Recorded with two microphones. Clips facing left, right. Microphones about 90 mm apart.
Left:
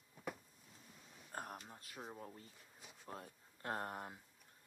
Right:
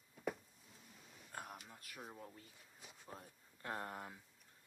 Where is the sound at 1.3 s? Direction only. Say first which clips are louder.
Left 3 dB; 45° left (ahead or behind).